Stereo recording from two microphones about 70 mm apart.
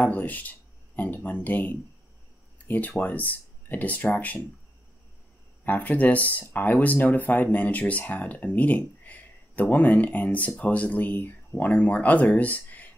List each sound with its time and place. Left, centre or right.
0.0 s speech: left
3.0 s speech: left
5.6 s speech: left